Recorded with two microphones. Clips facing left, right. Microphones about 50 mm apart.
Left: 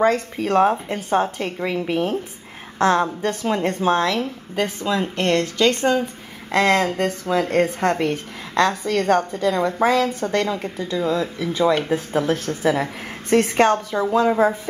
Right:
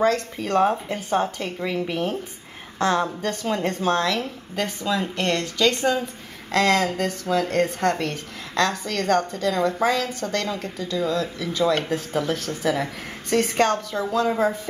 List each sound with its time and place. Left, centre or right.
0.0 s speech: centre
4.9 s speech: left
5.7 s speech: centre
6.5 s speech: centre